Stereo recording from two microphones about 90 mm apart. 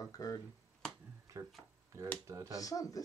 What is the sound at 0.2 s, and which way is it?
Speech, 40° left (ahead or behind).